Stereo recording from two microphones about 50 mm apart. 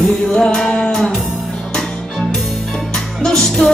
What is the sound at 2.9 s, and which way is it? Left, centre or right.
Music, centre.